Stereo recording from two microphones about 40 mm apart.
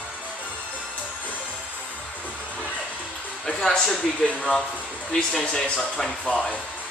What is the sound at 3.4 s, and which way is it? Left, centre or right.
Speech, centre.